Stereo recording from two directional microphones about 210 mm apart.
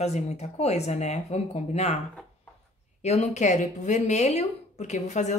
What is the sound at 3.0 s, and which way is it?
A woman's voice, 30° left (ahead or behind).